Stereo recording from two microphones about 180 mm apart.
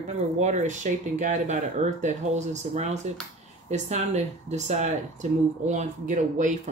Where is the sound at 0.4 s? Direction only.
40° right (ahead or behind).